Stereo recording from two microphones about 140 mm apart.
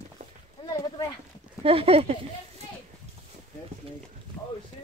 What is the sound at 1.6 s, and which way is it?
Speech, 45° right (ahead or behind).